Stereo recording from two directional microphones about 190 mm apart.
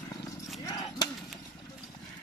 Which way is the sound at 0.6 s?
20° left (ahead or behind).